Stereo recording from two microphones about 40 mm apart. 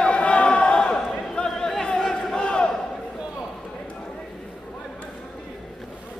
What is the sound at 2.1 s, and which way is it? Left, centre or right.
Battle cry, centre.